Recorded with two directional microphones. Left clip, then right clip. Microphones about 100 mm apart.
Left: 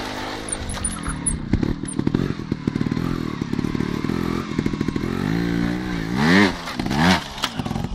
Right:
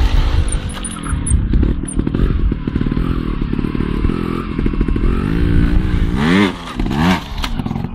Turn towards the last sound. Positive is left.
turn(degrees=20)  # may be behind; listen again after turning